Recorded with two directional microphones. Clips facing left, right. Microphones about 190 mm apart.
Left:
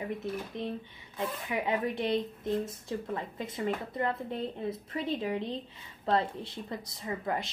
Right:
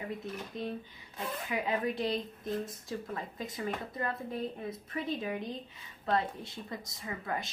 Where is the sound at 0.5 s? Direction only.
20° left (ahead or behind).